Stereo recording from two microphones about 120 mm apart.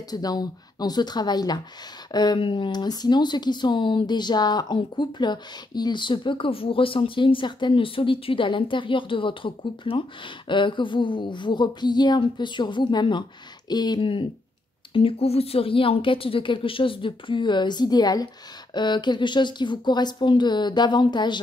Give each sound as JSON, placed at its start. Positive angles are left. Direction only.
{"t": 0.1, "sound": "a woman's voice", "side_deg": 35}